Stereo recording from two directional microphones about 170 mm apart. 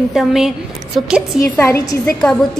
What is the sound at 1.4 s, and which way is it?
Speech, 15° left (ahead or behind).